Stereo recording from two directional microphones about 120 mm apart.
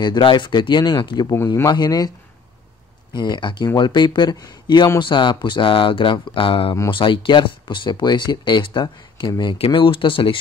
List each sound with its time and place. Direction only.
0.0 s speech: 40° left (ahead or behind)
1.3 s speech: 20° left (ahead or behind)
1.7 s speech: 35° left (ahead or behind)
3.2 s speech: 40° left (ahead or behind)